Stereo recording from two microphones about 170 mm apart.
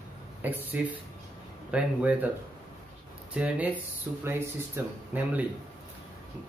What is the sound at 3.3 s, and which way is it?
Speech, 10° right (ahead or behind).